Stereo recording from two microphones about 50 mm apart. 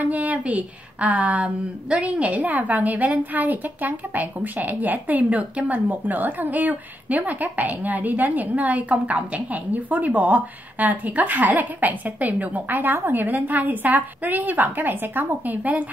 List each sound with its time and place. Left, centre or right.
0.0 s speech: right